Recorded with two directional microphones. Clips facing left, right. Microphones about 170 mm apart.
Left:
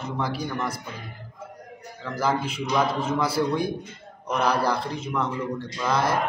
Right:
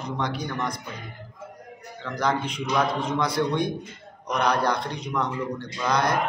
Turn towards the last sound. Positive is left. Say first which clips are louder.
# even
turn(degrees=5)  # may be behind; listen again after turning